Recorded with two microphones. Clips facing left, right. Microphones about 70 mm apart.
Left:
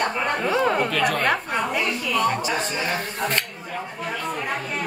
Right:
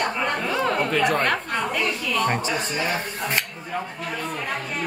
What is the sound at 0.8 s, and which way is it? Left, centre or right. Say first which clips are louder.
Speech: right 1 dB; right.